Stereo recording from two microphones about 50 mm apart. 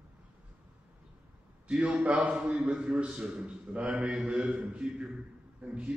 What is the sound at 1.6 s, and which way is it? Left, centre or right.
Speech, right.